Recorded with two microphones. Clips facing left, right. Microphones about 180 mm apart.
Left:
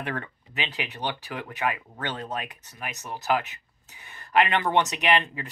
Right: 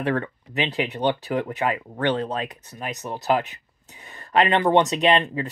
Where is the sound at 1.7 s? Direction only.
30° right (ahead or behind).